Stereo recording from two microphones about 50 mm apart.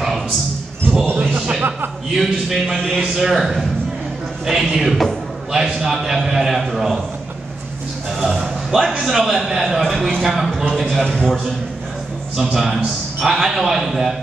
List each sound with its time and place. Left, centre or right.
1.3 s a sound: right
2.1 s a man's voice: centre
8.2 s a man's voice: centre